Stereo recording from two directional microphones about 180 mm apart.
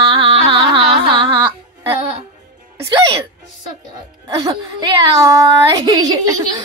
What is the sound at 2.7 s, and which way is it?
Music, 15° right (ahead or behind).